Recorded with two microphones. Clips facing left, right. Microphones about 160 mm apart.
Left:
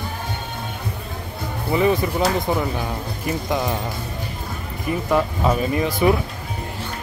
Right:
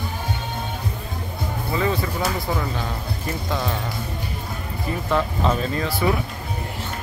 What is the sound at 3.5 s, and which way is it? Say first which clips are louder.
Speech: left 3 dB; 15° left (ahead or behind).